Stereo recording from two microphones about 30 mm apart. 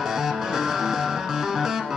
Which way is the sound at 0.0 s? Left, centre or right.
Centre.